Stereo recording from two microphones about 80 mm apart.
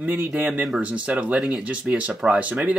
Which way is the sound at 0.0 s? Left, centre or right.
Right.